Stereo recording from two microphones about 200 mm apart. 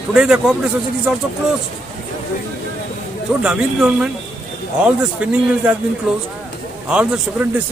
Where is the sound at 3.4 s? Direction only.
5° right (ahead or behind).